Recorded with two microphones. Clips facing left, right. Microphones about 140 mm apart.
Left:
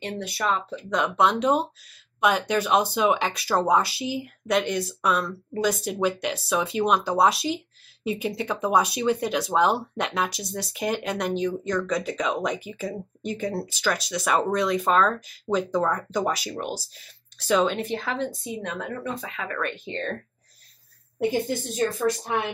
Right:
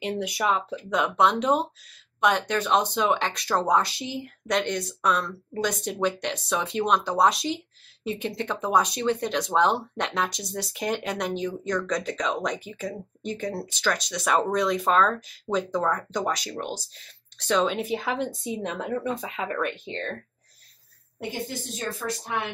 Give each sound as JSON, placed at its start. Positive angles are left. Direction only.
{"t": 0.2, "sound": "speech", "side_deg": -15}
{"t": 17.7, "sound": "speech", "side_deg": -5}
{"t": 19.6, "sound": "speech", "side_deg": 0}